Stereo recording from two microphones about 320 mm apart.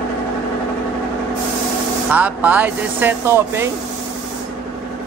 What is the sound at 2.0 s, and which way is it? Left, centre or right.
Speech, centre.